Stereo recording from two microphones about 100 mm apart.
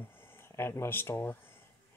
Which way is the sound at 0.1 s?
20° left (ahead or behind).